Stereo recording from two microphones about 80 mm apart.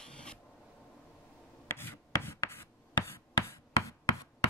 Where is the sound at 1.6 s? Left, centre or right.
Left.